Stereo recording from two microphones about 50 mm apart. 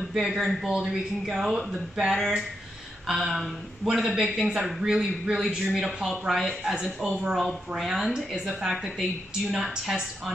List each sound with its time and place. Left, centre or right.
0.1 s speech: centre
4.2 s a woman's voice: centre
4.6 s speech: centre
6.0 s a woman's voice: centre; by 7.3 s right
7.3 s a woman's voice: centre